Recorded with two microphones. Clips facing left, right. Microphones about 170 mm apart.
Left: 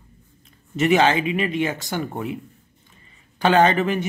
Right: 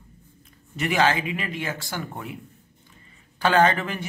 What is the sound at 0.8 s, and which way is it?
Speech, 20° left (ahead or behind).